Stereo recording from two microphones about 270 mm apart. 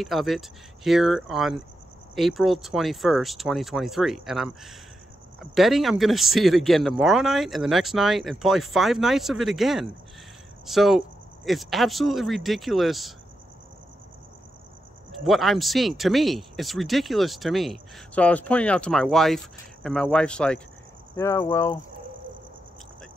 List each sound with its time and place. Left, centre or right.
0.0 s speech: centre
15.0 s speech: centre